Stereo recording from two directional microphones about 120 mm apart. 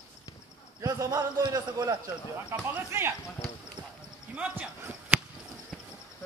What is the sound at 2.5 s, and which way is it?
Speech, 20° right (ahead or behind).